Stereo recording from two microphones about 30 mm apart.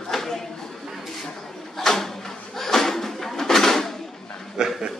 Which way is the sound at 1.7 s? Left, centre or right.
Centre.